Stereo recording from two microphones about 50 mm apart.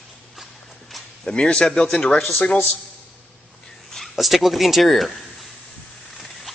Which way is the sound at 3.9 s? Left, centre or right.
Centre.